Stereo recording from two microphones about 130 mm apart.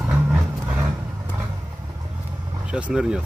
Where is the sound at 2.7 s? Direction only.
5° right (ahead or behind).